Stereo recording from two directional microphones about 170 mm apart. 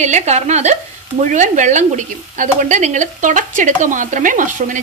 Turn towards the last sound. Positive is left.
turn(degrees=-50)  # may be behind; listen again after turning